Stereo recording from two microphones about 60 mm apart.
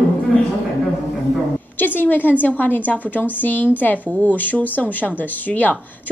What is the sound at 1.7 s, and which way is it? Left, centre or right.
A woman's voice, left.